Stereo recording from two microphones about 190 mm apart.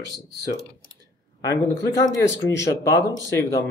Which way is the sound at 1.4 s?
20° left (ahead or behind).